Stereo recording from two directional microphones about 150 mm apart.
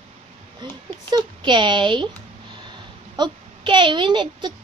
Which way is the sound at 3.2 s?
30° right (ahead or behind).